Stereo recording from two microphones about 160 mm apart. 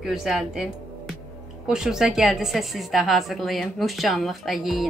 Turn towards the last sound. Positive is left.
turn(degrees=0)  # may be behind; listen again after turning